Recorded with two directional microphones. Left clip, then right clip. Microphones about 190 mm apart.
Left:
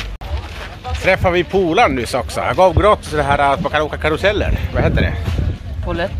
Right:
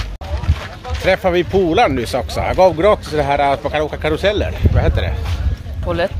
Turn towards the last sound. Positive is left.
turn(degrees=-45)  # may be behind; listen again after turning